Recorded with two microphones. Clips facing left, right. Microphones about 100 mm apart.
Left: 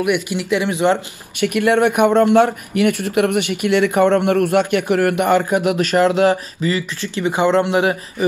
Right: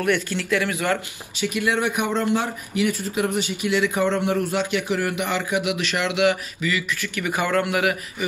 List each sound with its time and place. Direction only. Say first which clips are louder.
0.0 s speech: left 4 dB; 15° left (ahead or behind)
1.3 s speech: left 8 dB; 55° left (ahead or behind); by 8.3 s 30° left (ahead or behind)